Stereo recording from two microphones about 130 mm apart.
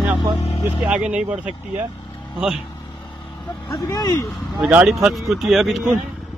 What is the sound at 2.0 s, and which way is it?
Vehicle, 35° left (ahead or behind).